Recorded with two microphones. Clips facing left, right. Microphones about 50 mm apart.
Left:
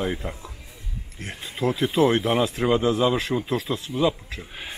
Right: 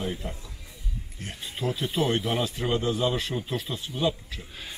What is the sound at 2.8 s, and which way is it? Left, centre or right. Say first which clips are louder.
Speech: left 4 dB; left.